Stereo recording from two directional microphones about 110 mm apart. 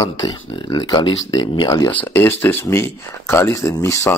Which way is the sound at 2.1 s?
20° left (ahead or behind).